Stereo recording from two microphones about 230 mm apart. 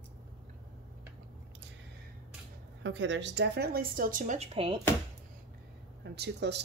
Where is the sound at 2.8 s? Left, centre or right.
Right.